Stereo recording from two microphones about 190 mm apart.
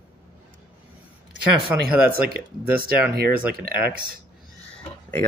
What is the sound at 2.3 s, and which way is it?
Speech, 55° right (ahead or behind).